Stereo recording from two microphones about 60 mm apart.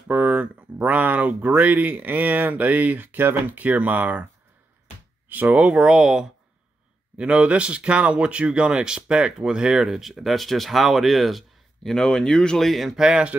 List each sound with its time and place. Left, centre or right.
0.1 s speech: right
5.3 s speech: right; by 13.0 s centre
13.0 s speech: centre